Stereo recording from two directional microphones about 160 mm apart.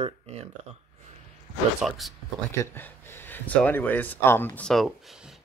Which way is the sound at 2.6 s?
15° left (ahead or behind).